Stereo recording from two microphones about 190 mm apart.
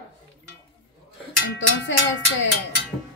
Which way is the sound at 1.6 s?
75° left (ahead or behind).